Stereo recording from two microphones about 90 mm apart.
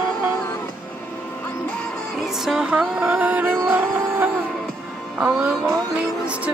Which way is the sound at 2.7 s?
15° right (ahead or behind).